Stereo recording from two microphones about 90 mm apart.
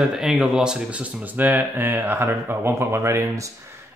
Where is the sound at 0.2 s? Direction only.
5° right (ahead or behind).